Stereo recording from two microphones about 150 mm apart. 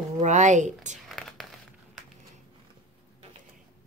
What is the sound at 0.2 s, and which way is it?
Speech, 55° right (ahead or behind).